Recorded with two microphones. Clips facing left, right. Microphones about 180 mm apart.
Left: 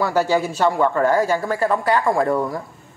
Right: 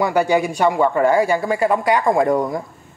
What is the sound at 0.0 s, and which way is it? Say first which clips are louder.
Speech: right 2 dB; 15° right (ahead or behind).